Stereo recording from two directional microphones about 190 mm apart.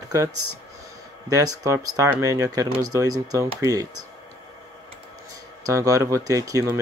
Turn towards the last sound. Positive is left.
turn(degrees=-15)  # may be behind; listen again after turning